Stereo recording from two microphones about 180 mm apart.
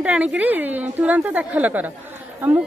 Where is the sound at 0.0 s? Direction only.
5° right (ahead or behind).